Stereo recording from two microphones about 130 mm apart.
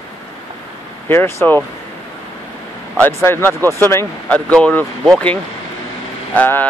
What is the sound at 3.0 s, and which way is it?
Speech, 20° left (ahead or behind).